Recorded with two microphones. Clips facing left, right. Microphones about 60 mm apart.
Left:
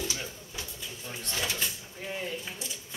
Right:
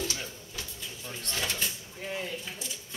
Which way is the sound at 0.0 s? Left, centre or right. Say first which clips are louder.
Even; centre.